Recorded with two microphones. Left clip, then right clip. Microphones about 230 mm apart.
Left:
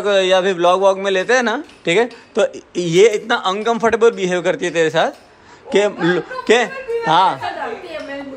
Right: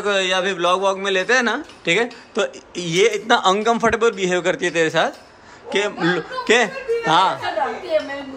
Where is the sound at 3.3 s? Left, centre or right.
Centre.